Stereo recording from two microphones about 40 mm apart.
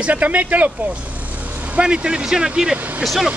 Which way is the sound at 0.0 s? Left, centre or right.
Right.